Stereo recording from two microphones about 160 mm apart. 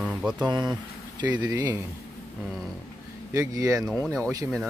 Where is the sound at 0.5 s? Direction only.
25° right (ahead or behind).